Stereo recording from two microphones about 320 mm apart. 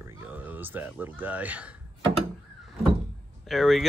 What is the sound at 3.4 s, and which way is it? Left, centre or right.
Speech, centre.